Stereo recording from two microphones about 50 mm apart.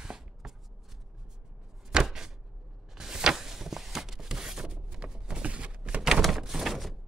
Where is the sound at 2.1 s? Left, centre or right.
Centre.